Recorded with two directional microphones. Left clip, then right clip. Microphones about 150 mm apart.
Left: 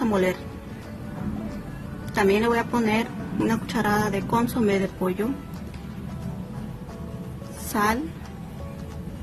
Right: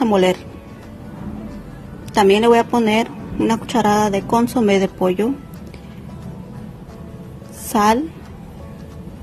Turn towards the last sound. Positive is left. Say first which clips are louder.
# right 8 dB
turn(degrees=-40)  # may be behind; listen again after turning